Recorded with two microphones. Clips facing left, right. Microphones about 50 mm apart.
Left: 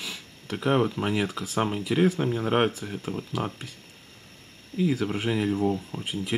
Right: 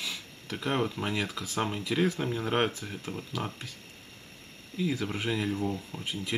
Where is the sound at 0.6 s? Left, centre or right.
Centre.